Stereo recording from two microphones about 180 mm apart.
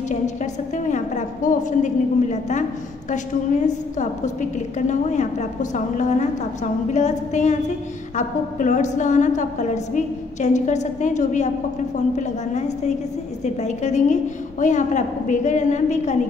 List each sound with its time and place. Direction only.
0.1 s a woman's voice: 45° left (ahead or behind)